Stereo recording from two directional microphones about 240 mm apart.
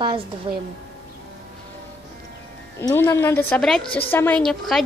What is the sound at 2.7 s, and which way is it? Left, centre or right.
A woman's voice, centre.